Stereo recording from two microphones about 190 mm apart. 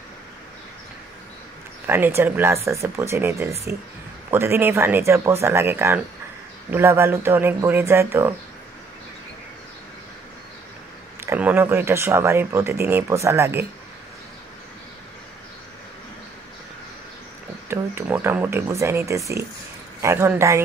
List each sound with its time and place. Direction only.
1.9 s speech: 10° right (ahead or behind)
11.2 s speech: 10° right (ahead or behind)
17.6 s speech: 10° right (ahead or behind)